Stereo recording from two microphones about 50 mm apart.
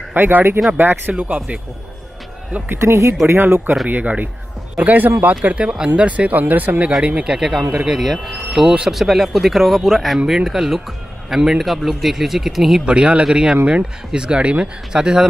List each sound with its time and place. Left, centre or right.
0.1 s speech: right
1.1 s speech: right
2.7 s speech: right
3.3 s speech: right
3.9 s speech: right
7.0 s a man's voice: right; by 8.4 s centre
8.5 s speech: centre
8.9 s a man's voice: centre
10.1 s a man's voice: centre
12.8 s speech: right